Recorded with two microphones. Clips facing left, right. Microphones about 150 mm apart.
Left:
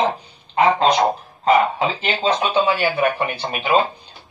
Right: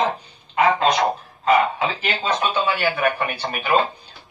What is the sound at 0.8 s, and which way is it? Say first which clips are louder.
Speech: left 3 dB; 30° left (ahead or behind).